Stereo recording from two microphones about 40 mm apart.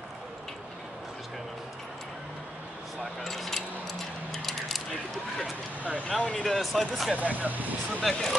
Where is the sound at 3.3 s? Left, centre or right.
Centre.